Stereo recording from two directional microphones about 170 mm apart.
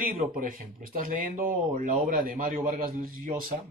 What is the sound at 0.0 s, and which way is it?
Speech, 55° right (ahead or behind).